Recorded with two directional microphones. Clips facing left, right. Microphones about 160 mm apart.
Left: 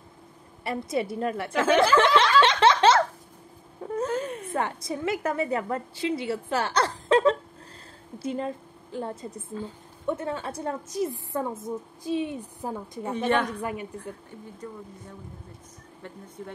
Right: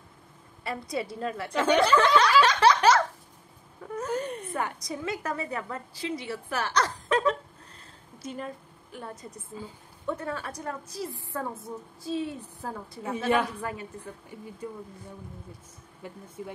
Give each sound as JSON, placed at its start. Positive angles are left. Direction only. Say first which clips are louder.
{"t": 0.7, "sound": "speech", "louder": "left 4 dB", "side_deg": 25}
{"t": 1.5, "sound": "a woman's voice", "louder": "left 1 dB", "side_deg": 0}
{"t": 2.4, "sound": "a sound", "louder": "left 1 dB", "side_deg": 25}
{"t": 3.8, "sound": "wail", "louder": "left 6 dB", "side_deg": 30}
{"t": 4.2, "sound": "a sound", "louder": "left 1 dB", "side_deg": 0}
{"t": 4.6, "sound": "a woman's voice", "louder": "left 5 dB", "side_deg": 25}
{"t": 13.1, "sound": "a woman's voice", "louder": "left 1 dB", "side_deg": -5}
{"t": 13.6, "sound": "a woman's voice", "louder": "left 3 dB", "side_deg": 15}
{"t": 14.3, "sound": "speech", "louder": "even", "side_deg": -10}
{"t": 16.0, "sound": "speech", "louder": "right 1 dB", "side_deg": -10}